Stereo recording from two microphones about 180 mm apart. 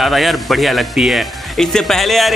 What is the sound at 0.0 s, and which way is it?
Speech, centre (ahead or behind).